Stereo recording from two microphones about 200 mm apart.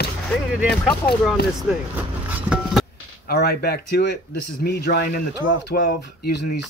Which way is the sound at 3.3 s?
55° left (ahead or behind).